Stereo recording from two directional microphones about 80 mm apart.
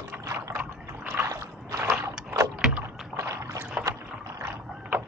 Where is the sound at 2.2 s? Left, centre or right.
Right.